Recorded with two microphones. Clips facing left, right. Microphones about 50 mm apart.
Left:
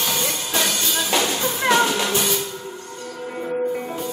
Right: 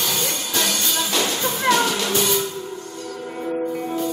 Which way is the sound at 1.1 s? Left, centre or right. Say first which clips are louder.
Left 3 dB; left.